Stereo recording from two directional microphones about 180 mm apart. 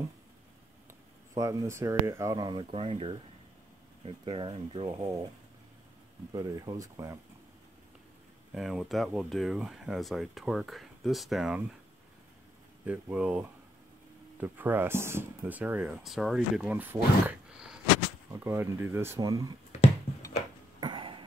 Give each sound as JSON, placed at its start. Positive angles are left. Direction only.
{"t": 1.3, "sound": "speech", "side_deg": -20}
{"t": 6.3, "sound": "speech", "side_deg": -20}
{"t": 8.5, "sound": "speech", "side_deg": 0}
{"t": 12.8, "sound": "speech", "side_deg": -10}
{"t": 20.8, "sound": "a sound", "side_deg": -25}